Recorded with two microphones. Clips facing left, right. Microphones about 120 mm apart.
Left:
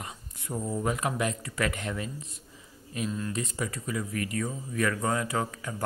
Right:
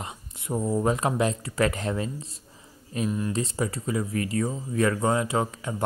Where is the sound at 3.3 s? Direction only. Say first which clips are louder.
Right 5 dB; 30° right (ahead or behind).